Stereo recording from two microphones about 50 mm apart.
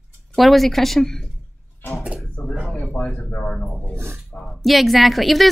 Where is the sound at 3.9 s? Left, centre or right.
Right.